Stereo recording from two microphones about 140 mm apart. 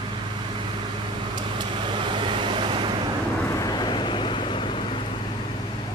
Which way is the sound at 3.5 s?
25° left (ahead or behind).